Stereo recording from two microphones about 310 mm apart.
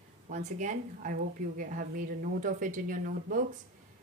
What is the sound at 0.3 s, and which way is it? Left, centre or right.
Speech, right.